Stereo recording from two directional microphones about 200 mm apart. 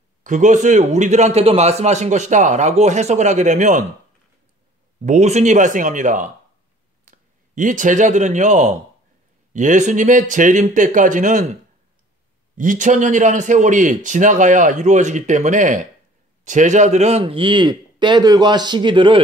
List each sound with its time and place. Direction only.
0.2 s a man's voice: 40° right (ahead or behind)
5.0 s a man's voice: 35° right (ahead or behind)
12.5 s a man's voice: 40° right (ahead or behind); by 19.2 s 25° right (ahead or behind)